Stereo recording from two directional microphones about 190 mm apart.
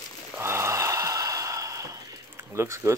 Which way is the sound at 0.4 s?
15° right (ahead or behind).